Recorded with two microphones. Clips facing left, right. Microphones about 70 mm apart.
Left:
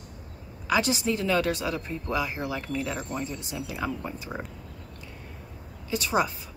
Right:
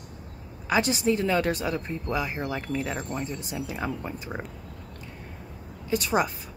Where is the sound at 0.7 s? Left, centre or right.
Right.